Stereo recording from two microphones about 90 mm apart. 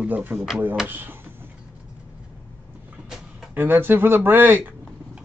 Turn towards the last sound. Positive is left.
turn(degrees=-20)  # may be behind; listen again after turning